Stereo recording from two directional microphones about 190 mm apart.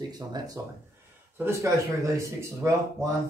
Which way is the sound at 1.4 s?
15° right (ahead or behind).